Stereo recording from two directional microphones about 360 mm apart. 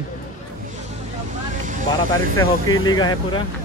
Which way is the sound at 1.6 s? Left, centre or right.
Right.